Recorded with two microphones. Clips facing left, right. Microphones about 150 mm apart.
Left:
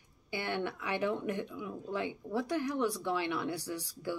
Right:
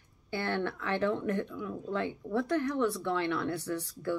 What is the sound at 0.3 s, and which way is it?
Speech, 15° left (ahead or behind).